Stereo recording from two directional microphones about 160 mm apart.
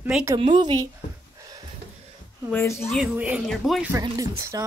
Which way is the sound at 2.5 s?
15° left (ahead or behind).